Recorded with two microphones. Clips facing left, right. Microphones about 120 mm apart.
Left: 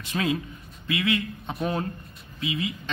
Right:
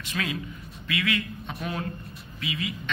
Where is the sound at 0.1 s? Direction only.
35° left (ahead or behind).